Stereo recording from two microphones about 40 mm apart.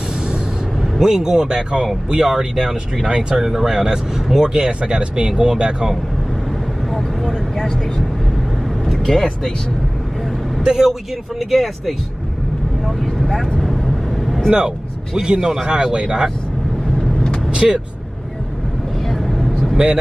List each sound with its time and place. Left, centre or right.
0.9 s speech: centre
6.9 s vehicle: centre
8.8 s vehicle: centre
10.6 s speech: centre
10.9 s speech: centre
12.8 s vehicle: centre
15.1 s speech: centre
17.0 s vehicle: centre
17.5 s speech: right
19.0 s vehicle: centre